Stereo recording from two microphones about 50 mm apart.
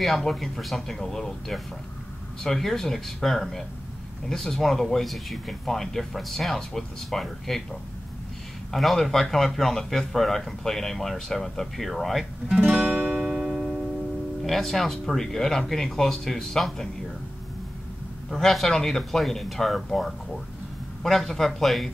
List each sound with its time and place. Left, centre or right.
0.0 s a man's voice: centre
8.7 s a man's voice: centre
12.8 s music: right
13.1 s music: centre
14.4 s speech: centre
18.3 s a man's voice: centre